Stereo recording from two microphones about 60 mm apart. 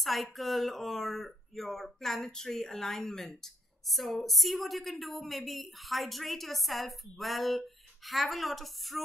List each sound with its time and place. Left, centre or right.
0.0 s a woman's voice: centre